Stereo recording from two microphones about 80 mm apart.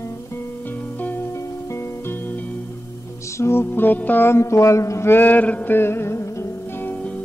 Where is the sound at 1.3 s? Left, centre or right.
Left.